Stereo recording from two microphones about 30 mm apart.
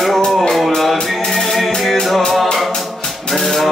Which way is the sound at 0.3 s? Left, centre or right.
Centre.